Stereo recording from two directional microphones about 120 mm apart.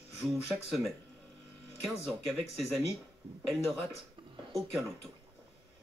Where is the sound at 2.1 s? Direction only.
Centre (ahead or behind).